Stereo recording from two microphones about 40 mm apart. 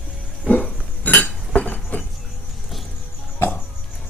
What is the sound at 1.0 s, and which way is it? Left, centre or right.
Chink, left.